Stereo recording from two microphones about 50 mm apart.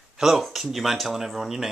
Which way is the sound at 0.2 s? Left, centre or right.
Centre.